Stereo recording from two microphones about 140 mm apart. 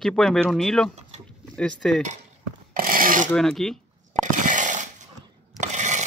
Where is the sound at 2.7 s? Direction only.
85° right.